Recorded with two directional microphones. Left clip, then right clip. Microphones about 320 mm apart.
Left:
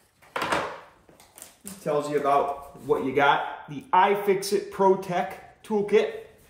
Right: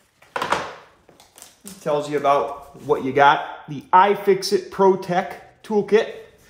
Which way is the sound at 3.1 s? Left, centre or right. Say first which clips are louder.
Right 7 dB; right.